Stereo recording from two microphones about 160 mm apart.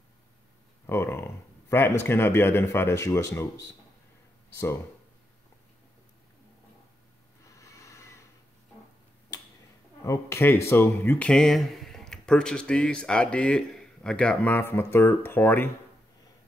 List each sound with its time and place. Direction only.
0.8 s speech: 15° left (ahead or behind)
7.5 s a sound: 20° left (ahead or behind)
10.0 s speech: 20° left (ahead or behind)